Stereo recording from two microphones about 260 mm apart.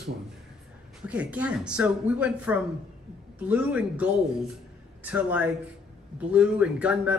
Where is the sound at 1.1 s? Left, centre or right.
Centre.